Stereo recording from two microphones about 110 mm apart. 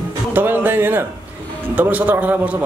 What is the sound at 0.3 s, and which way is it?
A man's voice, 20° right (ahead or behind).